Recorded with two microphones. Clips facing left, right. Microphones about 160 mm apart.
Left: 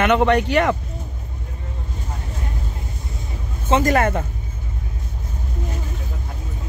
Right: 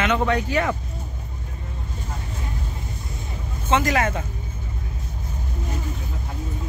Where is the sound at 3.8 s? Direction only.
50° left (ahead or behind).